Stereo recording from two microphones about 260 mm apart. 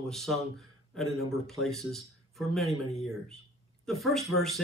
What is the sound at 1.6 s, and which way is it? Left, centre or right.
Speech, centre.